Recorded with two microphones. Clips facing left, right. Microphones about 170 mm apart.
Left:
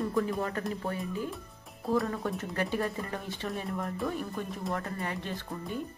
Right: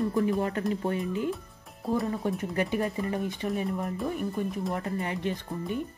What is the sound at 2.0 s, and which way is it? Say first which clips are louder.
Speech: right 4 dB; 20° right (ahead or behind).